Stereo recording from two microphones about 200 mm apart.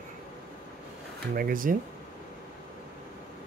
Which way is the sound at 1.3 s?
45° right (ahead or behind).